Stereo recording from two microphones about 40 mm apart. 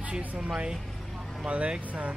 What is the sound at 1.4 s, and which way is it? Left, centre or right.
Speech, right.